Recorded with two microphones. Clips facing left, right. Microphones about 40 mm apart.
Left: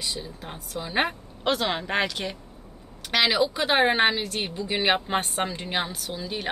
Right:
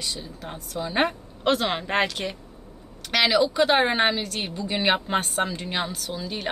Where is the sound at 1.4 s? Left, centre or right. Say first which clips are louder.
Right 2 dB; centre.